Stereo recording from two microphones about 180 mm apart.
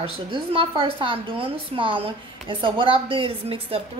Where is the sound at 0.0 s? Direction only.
30° right (ahead or behind).